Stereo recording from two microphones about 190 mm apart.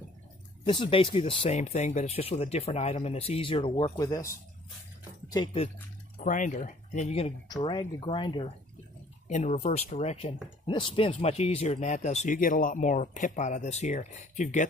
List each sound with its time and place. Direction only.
0.7 s speech: 25° left (ahead or behind)
5.3 s speech: 25° left (ahead or behind)
6.2 s speech: 40° left (ahead or behind)
7.4 s speech: 25° left (ahead or behind)
9.3 s speech: 40° left (ahead or behind)